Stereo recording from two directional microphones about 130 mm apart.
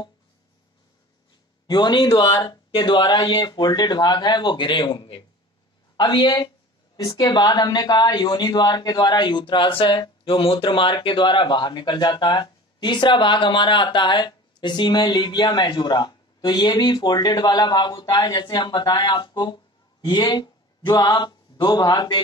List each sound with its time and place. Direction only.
1.7 s speech: 35° left (ahead or behind)